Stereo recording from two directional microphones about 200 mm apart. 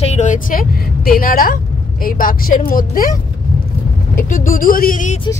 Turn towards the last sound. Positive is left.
turn(degrees=40)  # may be behind; listen again after turning